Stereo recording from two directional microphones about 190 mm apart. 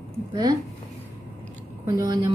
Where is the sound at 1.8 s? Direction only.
20° right (ahead or behind).